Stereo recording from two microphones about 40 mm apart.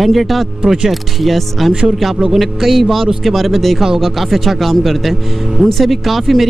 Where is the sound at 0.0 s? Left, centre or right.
Centre.